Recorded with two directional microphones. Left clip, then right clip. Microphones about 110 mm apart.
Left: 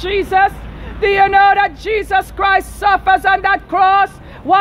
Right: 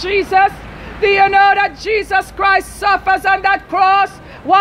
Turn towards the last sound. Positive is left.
turn(degrees=40)  # may be behind; listen again after turning